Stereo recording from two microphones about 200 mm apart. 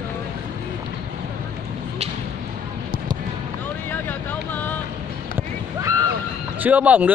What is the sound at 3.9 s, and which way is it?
Vehicle, 10° left (ahead or behind).